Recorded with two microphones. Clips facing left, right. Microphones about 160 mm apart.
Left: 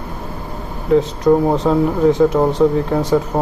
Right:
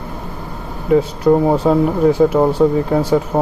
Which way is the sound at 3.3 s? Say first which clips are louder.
Right 5 dB; 15° right (ahead or behind).